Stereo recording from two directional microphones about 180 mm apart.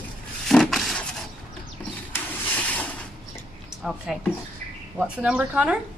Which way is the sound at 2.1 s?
10° left (ahead or behind).